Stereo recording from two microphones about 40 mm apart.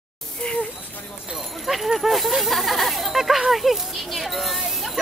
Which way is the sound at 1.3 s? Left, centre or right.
Centre.